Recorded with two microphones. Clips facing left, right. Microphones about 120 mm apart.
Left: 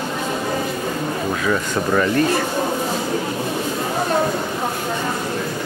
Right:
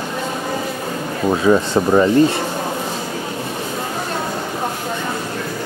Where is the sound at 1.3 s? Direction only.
25° right (ahead or behind).